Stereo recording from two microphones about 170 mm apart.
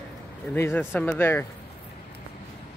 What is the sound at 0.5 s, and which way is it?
Speech, 15° left (ahead or behind).